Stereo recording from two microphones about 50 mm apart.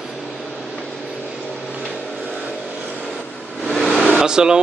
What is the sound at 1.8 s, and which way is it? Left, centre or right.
Vehicle, centre.